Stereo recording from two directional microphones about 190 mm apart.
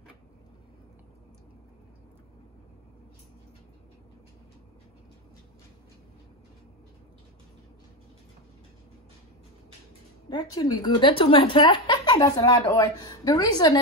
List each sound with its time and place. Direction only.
10.3 s speech: 20° left (ahead or behind)